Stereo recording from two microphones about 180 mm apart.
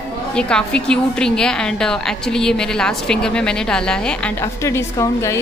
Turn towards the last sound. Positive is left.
turn(degrees=15)  # may be behind; listen again after turning